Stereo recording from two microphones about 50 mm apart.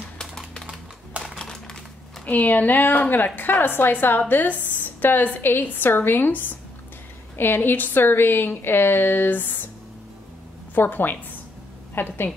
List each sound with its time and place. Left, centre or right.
1.2 s crumpling: centre
2.2 s a woman's voice: left
10.7 s a woman's voice: left